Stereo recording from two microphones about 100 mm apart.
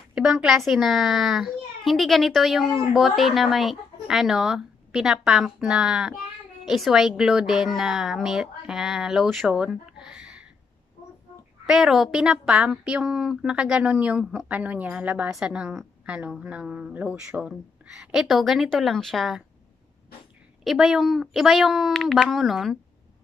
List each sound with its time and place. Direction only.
0.1 s a woman's voice: 10° right (ahead or behind)
11.6 s a woman's voice: 5° right (ahead or behind)
20.6 s a woman's voice: 5° right (ahead or behind)